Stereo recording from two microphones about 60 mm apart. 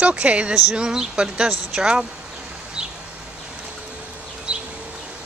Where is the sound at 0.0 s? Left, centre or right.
Right.